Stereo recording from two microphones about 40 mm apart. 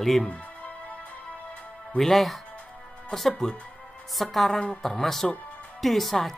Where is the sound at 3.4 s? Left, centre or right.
Centre.